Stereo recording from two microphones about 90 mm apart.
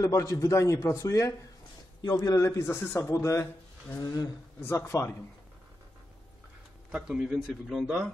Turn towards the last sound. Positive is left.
turn(degrees=-5)  # may be behind; listen again after turning